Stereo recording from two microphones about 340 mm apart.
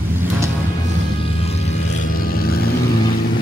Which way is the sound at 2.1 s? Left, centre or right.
Left.